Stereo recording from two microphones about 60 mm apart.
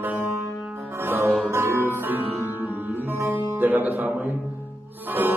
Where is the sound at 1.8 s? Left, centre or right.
Right.